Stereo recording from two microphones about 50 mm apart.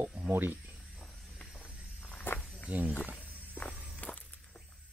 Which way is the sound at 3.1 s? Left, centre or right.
Left.